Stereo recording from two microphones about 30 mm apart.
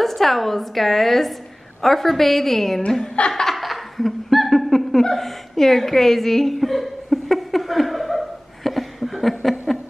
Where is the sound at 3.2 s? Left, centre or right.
Left.